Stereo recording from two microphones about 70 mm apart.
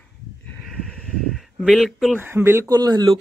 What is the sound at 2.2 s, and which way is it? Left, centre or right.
Speech, right.